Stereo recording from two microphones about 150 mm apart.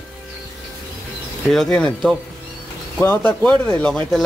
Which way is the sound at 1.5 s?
5° left (ahead or behind).